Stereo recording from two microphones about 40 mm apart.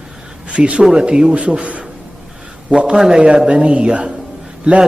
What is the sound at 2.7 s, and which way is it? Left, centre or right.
A man's voice, right.